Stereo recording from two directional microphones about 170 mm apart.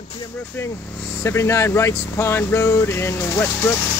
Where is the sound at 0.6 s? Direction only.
15° left (ahead or behind).